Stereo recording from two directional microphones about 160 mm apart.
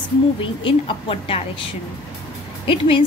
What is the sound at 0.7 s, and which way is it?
Speech, 35° left (ahead or behind).